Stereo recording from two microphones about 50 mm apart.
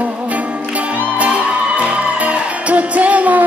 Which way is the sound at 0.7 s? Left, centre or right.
Right.